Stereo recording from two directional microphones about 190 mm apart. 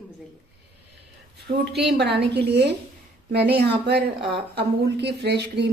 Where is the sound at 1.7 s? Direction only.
60° right (ahead or behind).